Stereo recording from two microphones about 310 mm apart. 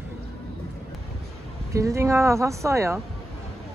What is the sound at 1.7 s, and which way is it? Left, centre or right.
Speech, centre.